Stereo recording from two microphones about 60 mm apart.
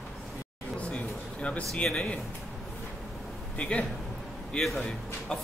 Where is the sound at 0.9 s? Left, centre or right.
Left.